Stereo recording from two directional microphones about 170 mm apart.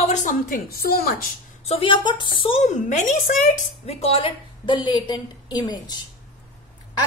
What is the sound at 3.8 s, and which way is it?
A woman's voice, 35° left (ahead or behind).